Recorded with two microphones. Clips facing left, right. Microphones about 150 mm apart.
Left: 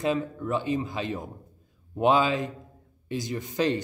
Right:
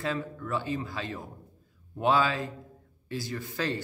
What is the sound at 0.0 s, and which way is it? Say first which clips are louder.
A man's voice: left 6 dB; 20° left (ahead or behind).